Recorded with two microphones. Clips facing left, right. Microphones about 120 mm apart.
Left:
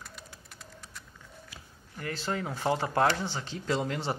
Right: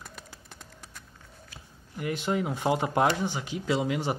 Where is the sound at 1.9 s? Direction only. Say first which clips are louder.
Right 5 dB; 15° right (ahead or behind).